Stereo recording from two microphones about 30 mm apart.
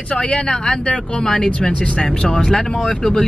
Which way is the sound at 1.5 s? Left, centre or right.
Left.